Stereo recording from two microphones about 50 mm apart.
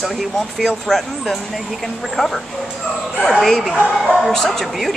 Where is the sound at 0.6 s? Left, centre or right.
Centre.